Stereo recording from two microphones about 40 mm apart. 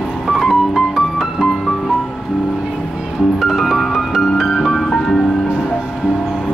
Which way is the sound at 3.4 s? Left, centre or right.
Centre.